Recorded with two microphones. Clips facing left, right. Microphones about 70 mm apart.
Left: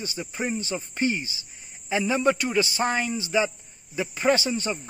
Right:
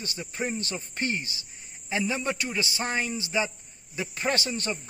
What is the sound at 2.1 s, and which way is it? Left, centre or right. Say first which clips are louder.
A man's voice: left 7 dB; left.